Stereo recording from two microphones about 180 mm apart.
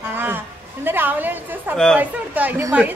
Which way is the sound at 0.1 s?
10° right (ahead or behind).